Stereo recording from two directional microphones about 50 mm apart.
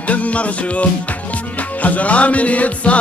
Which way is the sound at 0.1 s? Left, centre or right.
Left.